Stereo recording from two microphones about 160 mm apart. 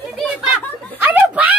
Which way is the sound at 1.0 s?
10° right (ahead or behind).